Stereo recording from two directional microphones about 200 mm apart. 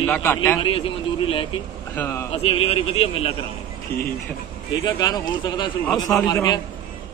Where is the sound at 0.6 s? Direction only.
25° left (ahead or behind).